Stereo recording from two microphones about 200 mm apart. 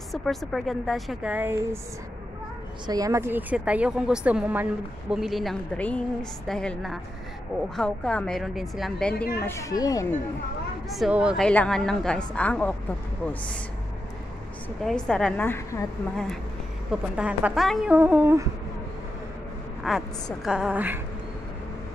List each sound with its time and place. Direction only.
0.1 s a woman's voice: centre (ahead or behind)
2.9 s a woman's voice: 15° right (ahead or behind); by 9.1 s centre (ahead or behind)
9.4 s a woman's voice: 15° left (ahead or behind)
10.9 s a woman's voice: 5° right (ahead or behind)
15.0 s a woman's voice: 5° left (ahead or behind)
16.9 s a woman's voice: 5° right (ahead or behind)
19.8 s a woman's voice: centre (ahead or behind)